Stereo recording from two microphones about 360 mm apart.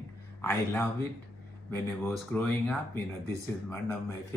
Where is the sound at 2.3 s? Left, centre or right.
Centre.